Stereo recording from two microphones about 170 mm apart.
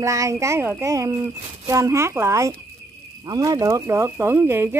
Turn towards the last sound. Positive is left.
turn(degrees=-15)  # may be behind; listen again after turning